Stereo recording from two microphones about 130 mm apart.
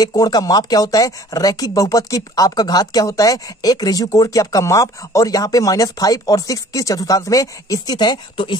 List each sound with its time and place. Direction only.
0.0 s speech: 30° left (ahead or behind)